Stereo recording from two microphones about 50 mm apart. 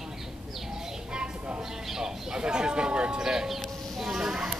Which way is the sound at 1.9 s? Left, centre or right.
Centre.